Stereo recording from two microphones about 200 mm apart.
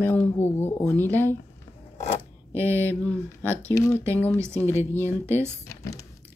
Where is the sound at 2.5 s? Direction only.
10° right (ahead or behind).